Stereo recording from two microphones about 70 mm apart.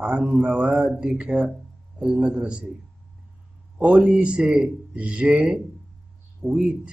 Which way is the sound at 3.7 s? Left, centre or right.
Right.